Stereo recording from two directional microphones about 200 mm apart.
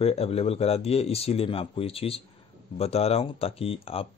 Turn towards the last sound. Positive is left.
turn(degrees=30)  # may be behind; listen again after turning